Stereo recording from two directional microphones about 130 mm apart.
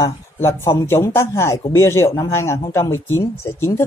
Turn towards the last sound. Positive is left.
turn(degrees=20)  # may be behind; listen again after turning